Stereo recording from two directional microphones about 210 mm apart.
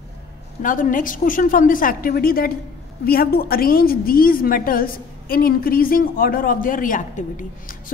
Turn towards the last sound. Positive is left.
turn(degrees=40)  # may be behind; listen again after turning